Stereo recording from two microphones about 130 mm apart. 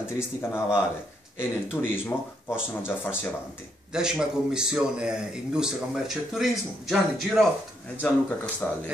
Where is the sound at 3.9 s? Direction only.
5° right (ahead or behind).